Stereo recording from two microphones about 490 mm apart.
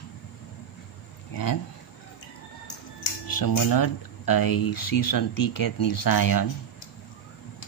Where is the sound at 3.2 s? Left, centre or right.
Left.